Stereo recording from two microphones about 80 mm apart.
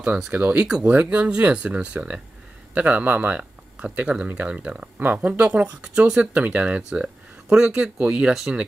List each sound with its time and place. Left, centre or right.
0.3 s speech: right